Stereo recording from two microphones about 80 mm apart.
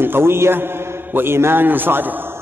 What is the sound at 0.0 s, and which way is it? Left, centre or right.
A man's voice, right.